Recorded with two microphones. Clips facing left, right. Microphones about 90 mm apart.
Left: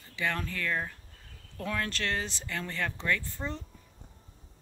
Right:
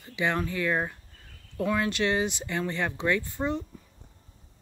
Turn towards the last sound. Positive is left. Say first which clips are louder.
# right 6 dB
turn(degrees=-15)  # may be behind; listen again after turning